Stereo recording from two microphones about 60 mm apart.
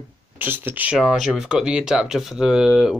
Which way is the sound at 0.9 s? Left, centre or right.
Centre.